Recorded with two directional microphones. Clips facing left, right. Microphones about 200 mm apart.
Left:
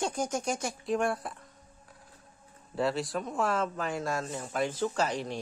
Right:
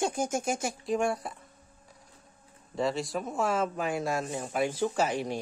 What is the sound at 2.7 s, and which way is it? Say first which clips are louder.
Speech: even; centre (ahead or behind).